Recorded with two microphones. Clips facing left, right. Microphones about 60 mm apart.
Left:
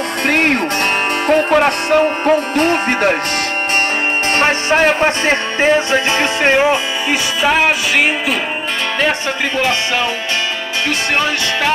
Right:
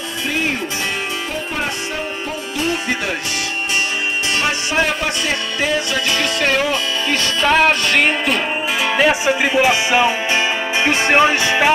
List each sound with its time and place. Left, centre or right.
0.3 s speech: left
4.4 s music: left
7.4 s music: centre
8.9 s speech: centre
10.9 s music: right